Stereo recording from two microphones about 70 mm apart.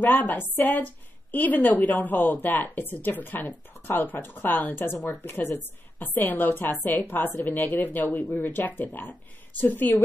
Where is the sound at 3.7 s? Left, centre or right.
Left.